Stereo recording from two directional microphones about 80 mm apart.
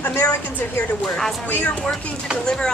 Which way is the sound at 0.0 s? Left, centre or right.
Left.